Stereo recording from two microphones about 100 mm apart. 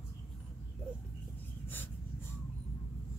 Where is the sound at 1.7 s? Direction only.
20° left (ahead or behind).